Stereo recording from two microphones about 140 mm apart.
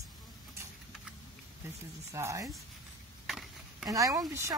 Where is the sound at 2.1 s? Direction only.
20° right (ahead or behind).